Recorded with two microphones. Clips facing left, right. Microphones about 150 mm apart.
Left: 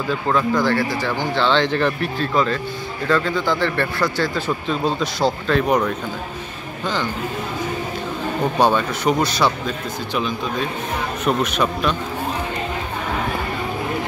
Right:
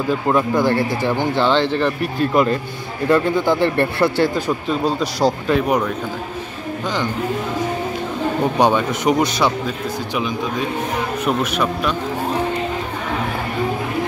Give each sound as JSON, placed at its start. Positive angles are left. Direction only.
{"t": 0.3, "sound": "a man's voice", "side_deg": -20}
{"t": 2.3, "sound": "a man's voice", "side_deg": -15}
{"t": 4.5, "sound": "speech", "side_deg": -5}
{"t": 8.5, "sound": "speech", "side_deg": -15}
{"t": 11.2, "sound": "speech", "side_deg": -5}